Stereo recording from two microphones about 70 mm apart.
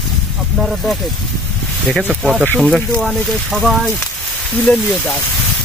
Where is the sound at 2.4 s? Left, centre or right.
Centre.